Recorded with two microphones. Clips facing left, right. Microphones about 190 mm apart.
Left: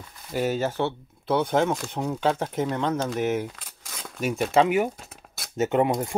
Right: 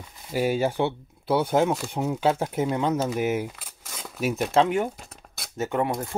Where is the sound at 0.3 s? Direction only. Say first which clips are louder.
Right 2 dB; 10° right (ahead or behind); by 4.9 s 5° left (ahead or behind).